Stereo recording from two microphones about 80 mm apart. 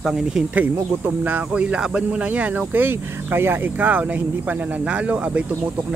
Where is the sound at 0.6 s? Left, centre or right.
Right.